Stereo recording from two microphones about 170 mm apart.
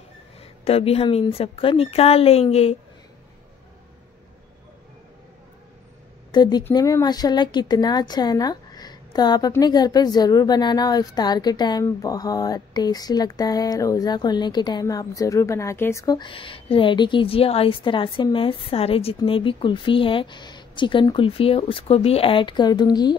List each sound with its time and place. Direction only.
0.4 s a woman's voice: 35° left (ahead or behind)
6.3 s speech: 25° left (ahead or behind)
6.7 s a sound: 20° left (ahead or behind)